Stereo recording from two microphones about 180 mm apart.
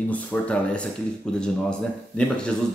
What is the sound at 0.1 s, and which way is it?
Speech, 5° left (ahead or behind).